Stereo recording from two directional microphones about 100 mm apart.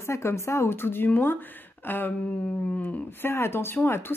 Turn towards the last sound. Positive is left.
turn(degrees=20)  # may be behind; listen again after turning